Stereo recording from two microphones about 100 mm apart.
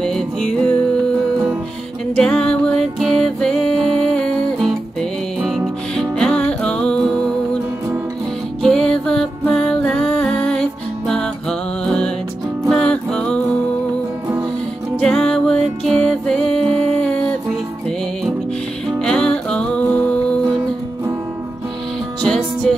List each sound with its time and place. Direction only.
0.0 s music: 5° left (ahead or behind)
2.1 s music: 5° left (ahead or behind)
5.9 s music: 5° left (ahead or behind)
8.6 s music: 5° left (ahead or behind)
15.0 s music: 10° left (ahead or behind)
18.9 s music: 5° left (ahead or behind)
22.2 s music: 5° left (ahead or behind)